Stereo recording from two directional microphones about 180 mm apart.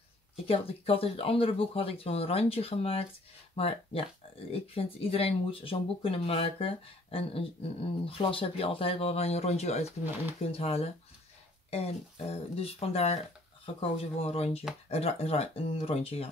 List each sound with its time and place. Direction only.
0.5 s speech: 30° left (ahead or behind)